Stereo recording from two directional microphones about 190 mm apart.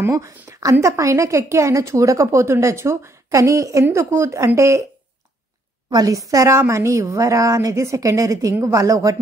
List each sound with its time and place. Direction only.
0.0 s a woman's voice: 15° right (ahead or behind)
5.9 s a woman's voice: 20° right (ahead or behind)